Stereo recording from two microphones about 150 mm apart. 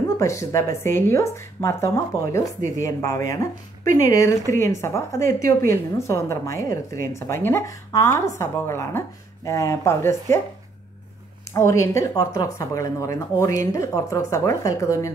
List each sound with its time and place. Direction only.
0.2 s a woman's voice: 20° left (ahead or behind)
11.5 s a woman's voice: 20° left (ahead or behind)